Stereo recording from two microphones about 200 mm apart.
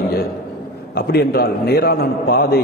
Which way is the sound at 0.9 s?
50° left (ahead or behind).